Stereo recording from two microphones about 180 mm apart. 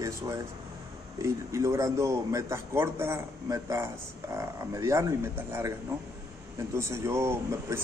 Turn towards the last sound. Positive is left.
turn(degrees=-15)  # may be behind; listen again after turning